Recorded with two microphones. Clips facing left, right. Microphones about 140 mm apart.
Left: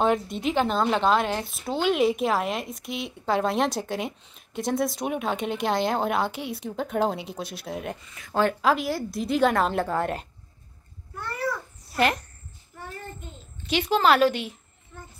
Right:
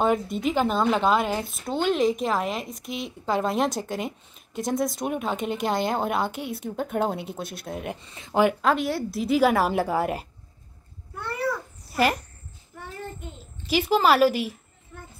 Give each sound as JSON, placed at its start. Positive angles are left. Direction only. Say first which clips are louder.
{"t": 0.0, "sound": "speech", "louder": "even", "side_deg": 0}
{"t": 8.0, "sound": "speech", "louder": "right 2 dB", "side_deg": -25}
{"t": 8.5, "sound": "speech", "louder": "even", "side_deg": 0}
{"t": 11.9, "sound": "speech", "louder": "right 1 dB", "side_deg": -5}
{"t": 13.7, "sound": "speech", "louder": "right 1 dB", "side_deg": -5}